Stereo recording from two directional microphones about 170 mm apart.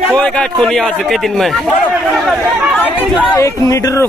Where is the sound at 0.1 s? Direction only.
5° left (ahead or behind).